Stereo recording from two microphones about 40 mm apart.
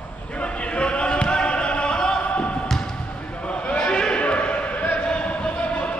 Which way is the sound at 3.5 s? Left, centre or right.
Left.